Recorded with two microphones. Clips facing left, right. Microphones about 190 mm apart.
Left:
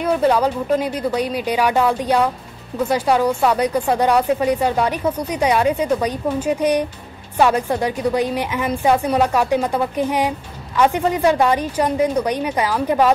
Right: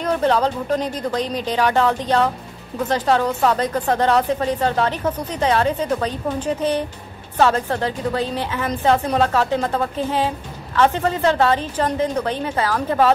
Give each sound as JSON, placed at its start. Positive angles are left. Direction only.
{"t": 0.0, "sound": "speech", "side_deg": 10}